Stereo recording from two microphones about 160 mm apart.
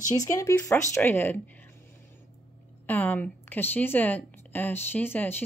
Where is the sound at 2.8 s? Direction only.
10° left (ahead or behind).